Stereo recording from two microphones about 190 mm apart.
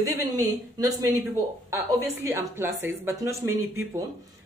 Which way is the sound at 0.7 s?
15° right (ahead or behind).